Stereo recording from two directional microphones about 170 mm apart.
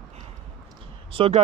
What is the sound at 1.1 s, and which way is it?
Speech, 35° right (ahead or behind).